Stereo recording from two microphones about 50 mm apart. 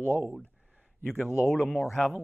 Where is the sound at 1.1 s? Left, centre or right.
Left.